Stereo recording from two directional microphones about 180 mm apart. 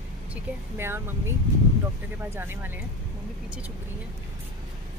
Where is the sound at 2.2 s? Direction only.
10° right (ahead or behind).